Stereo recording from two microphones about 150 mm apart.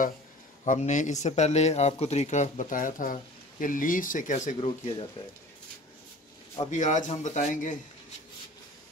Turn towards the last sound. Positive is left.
turn(degrees=55)  # may be behind; listen again after turning